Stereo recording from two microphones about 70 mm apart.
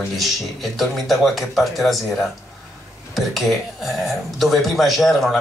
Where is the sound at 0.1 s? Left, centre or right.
Centre.